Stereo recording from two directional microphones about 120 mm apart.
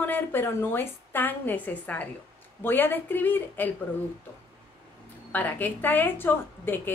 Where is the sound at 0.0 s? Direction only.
15° left (ahead or behind).